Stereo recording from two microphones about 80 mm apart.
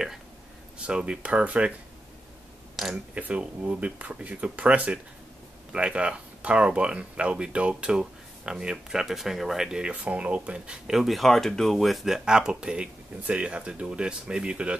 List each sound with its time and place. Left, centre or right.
0.7 s speech: centre
2.7 s a sound: centre
3.2 s speech: centre